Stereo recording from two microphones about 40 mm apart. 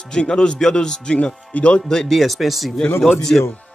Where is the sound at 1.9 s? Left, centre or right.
Centre.